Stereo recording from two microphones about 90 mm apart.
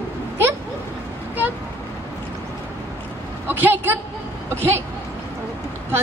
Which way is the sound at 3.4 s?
20° right (ahead or behind).